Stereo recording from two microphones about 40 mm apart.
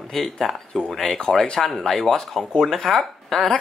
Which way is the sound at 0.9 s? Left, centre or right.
Centre.